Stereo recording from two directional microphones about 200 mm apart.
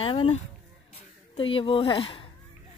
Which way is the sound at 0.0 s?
25° left (ahead or behind).